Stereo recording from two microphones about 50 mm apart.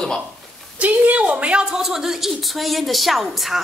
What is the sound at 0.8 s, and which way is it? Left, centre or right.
Speech, right.